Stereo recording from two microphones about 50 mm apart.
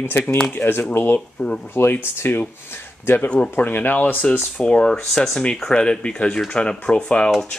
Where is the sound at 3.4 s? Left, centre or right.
Left.